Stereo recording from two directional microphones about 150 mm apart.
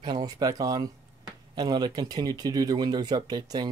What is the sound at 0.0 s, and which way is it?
Speech, 30° right (ahead or behind).